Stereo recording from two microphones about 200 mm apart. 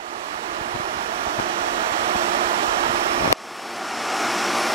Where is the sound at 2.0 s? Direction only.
30° right (ahead or behind).